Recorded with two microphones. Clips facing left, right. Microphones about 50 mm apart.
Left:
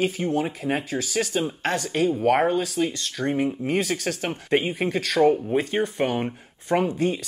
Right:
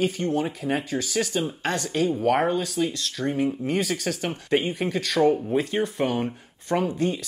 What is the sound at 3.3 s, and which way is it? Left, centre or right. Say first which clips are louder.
Speech: left 1 dB; centre.